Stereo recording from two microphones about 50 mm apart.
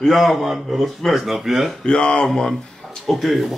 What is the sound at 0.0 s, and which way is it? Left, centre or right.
Speech, centre.